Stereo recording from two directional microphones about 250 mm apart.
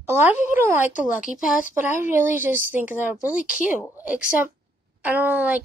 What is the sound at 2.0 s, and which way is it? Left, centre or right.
A woman's voice, centre.